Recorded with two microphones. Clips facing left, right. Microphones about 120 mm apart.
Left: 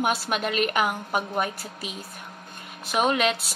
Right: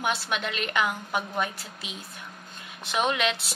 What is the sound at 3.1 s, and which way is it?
Speech, 40° left (ahead or behind).